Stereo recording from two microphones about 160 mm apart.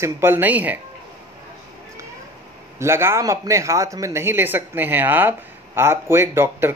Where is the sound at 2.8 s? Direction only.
15° right (ahead or behind).